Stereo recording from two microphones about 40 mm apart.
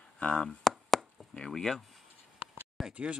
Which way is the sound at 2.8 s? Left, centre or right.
Centre.